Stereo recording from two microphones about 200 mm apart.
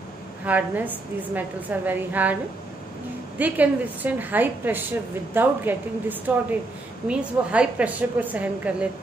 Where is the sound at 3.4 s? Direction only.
10° right (ahead or behind).